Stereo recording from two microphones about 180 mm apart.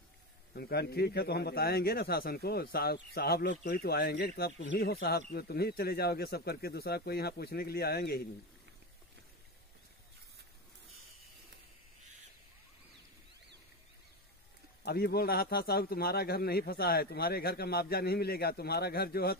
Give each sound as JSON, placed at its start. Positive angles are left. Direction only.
{"t": 0.6, "sound": "a man's voice", "side_deg": 60}
{"t": 4.6, "sound": "a man's voice", "side_deg": 70}
{"t": 14.9, "sound": "a man's voice", "side_deg": 60}